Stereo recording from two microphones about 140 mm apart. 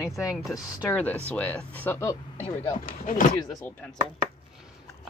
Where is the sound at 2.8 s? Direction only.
75° left (ahead or behind).